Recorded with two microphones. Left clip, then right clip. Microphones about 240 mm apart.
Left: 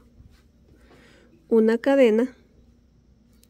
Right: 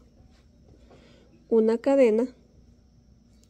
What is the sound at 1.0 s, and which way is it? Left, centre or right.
Speech, centre.